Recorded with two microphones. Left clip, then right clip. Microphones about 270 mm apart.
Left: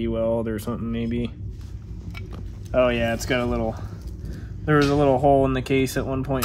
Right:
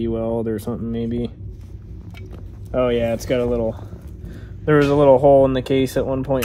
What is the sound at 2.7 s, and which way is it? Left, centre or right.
Speech, centre.